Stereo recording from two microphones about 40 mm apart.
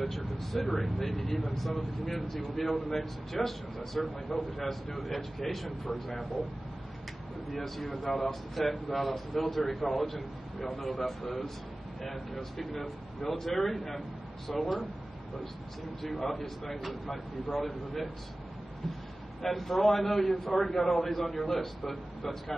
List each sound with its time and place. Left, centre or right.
0.0 s speech: centre
7.5 s speech: centre
16.0 s speech: centre
19.4 s a man's voice: centre